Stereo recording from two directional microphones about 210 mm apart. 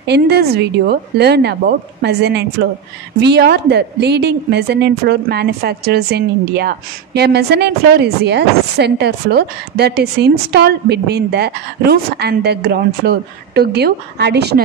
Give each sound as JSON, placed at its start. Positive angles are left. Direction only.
{"t": 0.0, "sound": "a woman's voice", "side_deg": -50}